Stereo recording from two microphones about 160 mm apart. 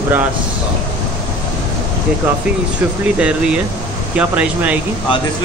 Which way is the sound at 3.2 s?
5° right (ahead or behind).